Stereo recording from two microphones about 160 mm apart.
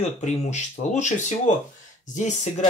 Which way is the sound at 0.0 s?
45° left (ahead or behind).